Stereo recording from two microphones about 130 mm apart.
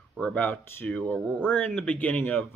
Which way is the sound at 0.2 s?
10° left (ahead or behind).